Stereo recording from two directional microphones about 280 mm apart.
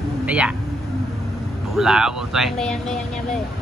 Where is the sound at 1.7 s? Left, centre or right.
Centre.